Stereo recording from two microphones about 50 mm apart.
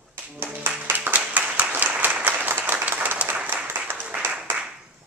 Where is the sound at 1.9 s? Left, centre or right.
Right.